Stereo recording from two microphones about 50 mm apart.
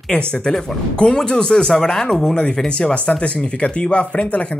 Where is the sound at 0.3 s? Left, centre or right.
Centre.